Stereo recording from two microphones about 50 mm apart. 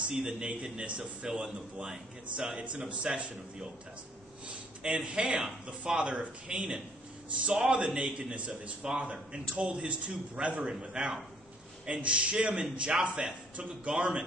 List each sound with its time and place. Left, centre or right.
0.1 s a man's voice: centre